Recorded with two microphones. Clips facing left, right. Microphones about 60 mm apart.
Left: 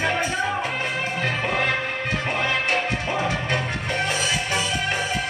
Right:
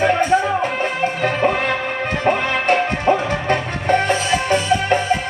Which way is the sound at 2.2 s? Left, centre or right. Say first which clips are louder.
Right 8 dB; right.